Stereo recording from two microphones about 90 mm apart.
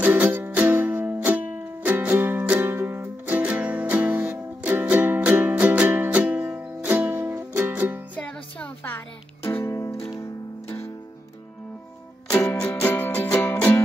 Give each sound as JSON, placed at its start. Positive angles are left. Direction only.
{"t": 0.0, "sound": "music", "side_deg": -20}
{"t": 8.2, "sound": "music", "side_deg": 10}
{"t": 12.4, "sound": "music", "side_deg": 15}